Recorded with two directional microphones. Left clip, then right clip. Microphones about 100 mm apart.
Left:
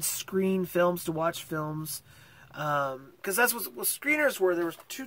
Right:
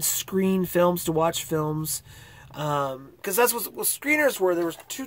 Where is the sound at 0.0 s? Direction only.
20° right (ahead or behind).